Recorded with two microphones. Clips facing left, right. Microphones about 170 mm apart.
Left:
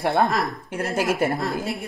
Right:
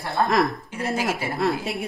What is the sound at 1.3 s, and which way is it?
Speech, 70° right (ahead or behind).